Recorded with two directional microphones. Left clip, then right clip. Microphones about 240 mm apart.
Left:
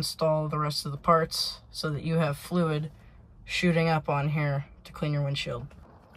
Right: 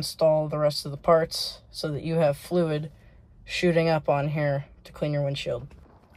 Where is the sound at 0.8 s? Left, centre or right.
Left.